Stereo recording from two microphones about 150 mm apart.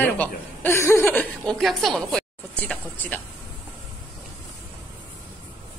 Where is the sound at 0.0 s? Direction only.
15° left (ahead or behind).